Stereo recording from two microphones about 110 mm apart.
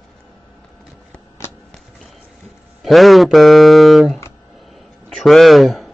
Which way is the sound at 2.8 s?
Centre (ahead or behind).